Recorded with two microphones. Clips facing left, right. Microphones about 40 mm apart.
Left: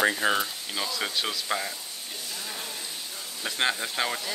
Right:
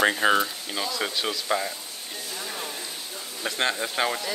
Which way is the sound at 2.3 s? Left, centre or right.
Right.